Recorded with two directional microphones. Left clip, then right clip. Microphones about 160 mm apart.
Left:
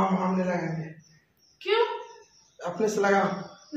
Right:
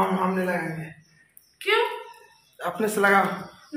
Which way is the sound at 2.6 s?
15° right (ahead or behind).